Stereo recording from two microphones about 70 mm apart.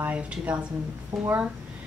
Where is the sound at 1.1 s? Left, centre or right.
Right.